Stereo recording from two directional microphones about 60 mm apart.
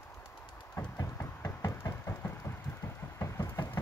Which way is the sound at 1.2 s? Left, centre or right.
Left.